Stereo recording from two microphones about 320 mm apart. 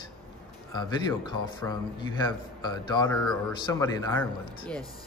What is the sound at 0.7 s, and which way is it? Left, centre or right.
Speech, centre.